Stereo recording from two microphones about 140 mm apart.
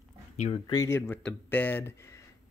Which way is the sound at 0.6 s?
25° left (ahead or behind).